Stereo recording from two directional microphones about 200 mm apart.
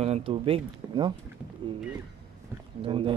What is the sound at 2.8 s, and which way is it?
Speech, 25° right (ahead or behind).